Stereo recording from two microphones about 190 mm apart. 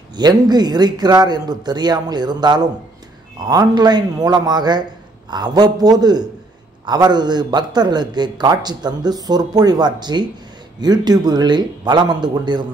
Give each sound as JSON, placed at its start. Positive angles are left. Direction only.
{"t": 0.1, "sound": "a man's voice", "side_deg": -20}